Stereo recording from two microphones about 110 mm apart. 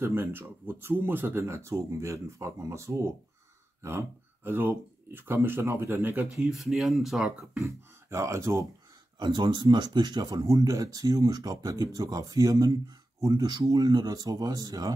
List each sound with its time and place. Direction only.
0.0 s speech: 20° right (ahead or behind)
4.5 s speech: 20° right (ahead or behind)
6.4 s speech: 5° right (ahead or behind)
7.5 s speech: 25° right (ahead or behind)
9.2 s speech: 45° right (ahead or behind)